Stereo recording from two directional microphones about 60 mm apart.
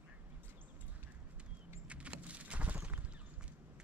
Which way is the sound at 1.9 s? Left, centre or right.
Right.